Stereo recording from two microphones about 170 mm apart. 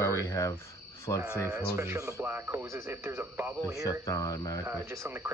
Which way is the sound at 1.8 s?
15° right (ahead or behind).